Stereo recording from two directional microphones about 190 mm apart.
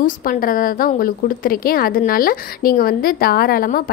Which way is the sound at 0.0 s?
50° left (ahead or behind).